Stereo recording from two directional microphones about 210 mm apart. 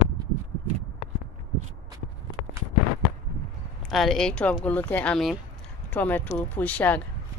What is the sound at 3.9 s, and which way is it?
Speech, centre (ahead or behind).